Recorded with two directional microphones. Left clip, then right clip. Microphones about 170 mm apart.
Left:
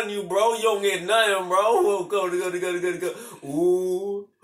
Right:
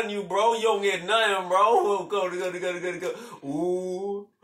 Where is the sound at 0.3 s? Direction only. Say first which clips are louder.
Left 1 dB; 30° left (ahead or behind).